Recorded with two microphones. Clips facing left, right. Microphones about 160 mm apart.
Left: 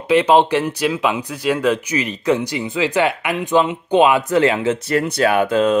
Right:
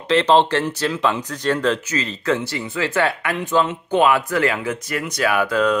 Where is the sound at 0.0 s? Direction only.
10° left (ahead or behind).